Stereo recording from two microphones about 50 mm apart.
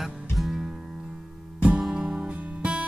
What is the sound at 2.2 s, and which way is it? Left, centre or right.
Music, right.